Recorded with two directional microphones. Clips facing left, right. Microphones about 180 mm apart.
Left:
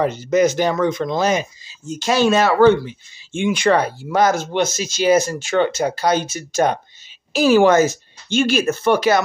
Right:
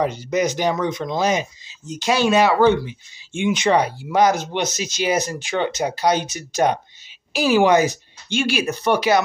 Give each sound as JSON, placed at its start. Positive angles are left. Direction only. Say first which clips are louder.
{"t": 0.0, "sound": "speech", "louder": "left 4 dB", "side_deg": -10}